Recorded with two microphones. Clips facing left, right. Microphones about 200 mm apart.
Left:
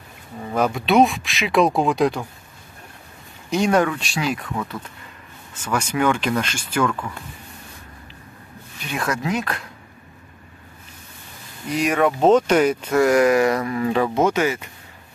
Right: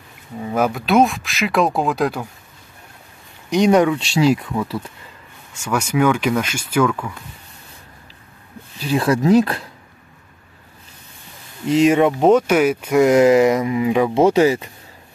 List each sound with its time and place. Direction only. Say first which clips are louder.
0.4 s speech: right 2 dB; 5° right (ahead or behind)
3.4 s speech: right 4 dB; 15° right (ahead or behind)
5.5 s speech: right 3 dB; 10° right (ahead or behind)
8.7 s speech: right 8 dB; 30° right (ahead or behind)
11.6 s speech: right 6 dB; 25° right (ahead or behind)
12.3 s speech: even; 10° right (ahead or behind)
13.0 s speech: right 4 dB; 25° right (ahead or behind)
14.1 s speech: right 6 dB; 35° right (ahead or behind)